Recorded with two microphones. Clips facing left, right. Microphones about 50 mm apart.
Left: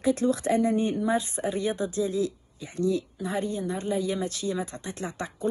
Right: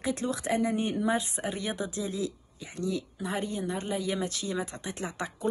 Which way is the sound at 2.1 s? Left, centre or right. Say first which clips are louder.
Left 5 dB; left.